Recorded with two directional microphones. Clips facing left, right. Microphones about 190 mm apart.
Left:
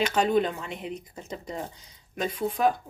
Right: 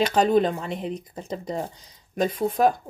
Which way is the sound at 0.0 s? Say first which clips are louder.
Right 4 dB; 35° right (ahead or behind).